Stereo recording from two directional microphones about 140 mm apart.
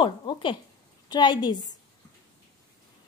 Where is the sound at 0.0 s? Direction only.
35° left (ahead or behind).